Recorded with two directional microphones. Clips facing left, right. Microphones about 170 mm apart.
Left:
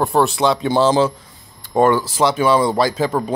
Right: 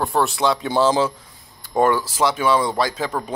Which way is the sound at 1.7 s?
20° left (ahead or behind).